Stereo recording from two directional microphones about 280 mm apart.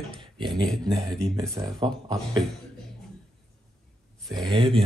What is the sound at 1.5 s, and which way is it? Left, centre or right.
Speech, centre.